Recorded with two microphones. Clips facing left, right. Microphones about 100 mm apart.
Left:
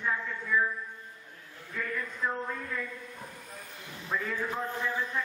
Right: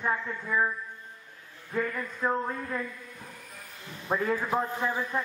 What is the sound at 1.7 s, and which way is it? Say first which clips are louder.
A man's voice: right 5 dB; 40° right (ahead or behind).